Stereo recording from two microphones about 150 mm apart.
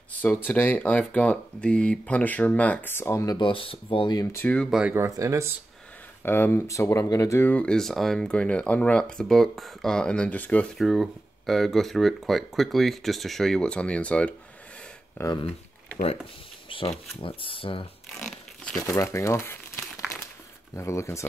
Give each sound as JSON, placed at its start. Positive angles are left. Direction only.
{"t": 0.1, "sound": "speech", "side_deg": 10}
{"t": 3.3, "sound": "speech", "side_deg": 35}
{"t": 4.4, "sound": "speech", "side_deg": 10}
{"t": 4.6, "sound": "speech", "side_deg": -5}
{"t": 4.9, "sound": "speech", "side_deg": -20}
{"t": 6.2, "sound": "speech", "side_deg": 15}
{"t": 10.8, "sound": "speech", "side_deg": 0}
{"t": 15.1, "sound": "speech", "side_deg": 20}
{"t": 16.6, "sound": "shuffling cards", "side_deg": 35}
{"t": 17.2, "sound": "speech", "side_deg": 35}
{"t": 18.2, "sound": "zipper", "side_deg": 5}
{"t": 18.8, "sound": "speech", "side_deg": 20}
{"t": 20.7, "sound": "speech", "side_deg": 20}